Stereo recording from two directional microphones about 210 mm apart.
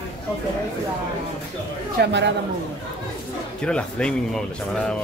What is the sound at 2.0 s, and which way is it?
Speech, 55° right (ahead or behind).